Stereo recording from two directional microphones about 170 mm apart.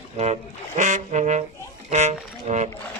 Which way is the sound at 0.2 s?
45° right (ahead or behind).